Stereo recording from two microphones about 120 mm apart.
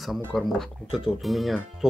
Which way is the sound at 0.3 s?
Centre (ahead or behind).